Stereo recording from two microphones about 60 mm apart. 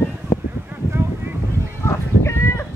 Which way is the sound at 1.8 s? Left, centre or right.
Left.